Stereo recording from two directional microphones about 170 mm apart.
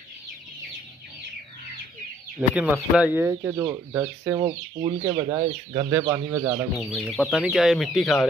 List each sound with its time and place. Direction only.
2.5 s speech: 5° right (ahead or behind)
4.4 s speech: 30° right (ahead or behind)
6.8 s speech: centre (ahead or behind)